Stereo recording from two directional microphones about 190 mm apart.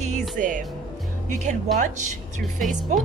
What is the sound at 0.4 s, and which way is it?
Speech, 45° right (ahead or behind).